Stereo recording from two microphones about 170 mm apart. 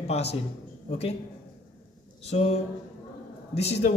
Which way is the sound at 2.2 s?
40° left (ahead or behind).